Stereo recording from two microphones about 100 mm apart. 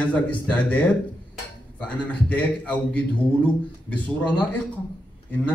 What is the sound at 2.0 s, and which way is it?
Speech, 15° left (ahead or behind).